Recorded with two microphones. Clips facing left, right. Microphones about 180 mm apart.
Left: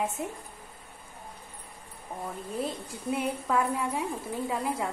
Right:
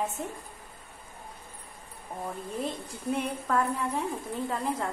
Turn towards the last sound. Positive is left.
turn(degrees=10)  # may be behind; listen again after turning